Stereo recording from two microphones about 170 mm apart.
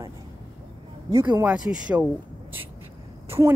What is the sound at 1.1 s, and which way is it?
Speech, 25° right (ahead or behind).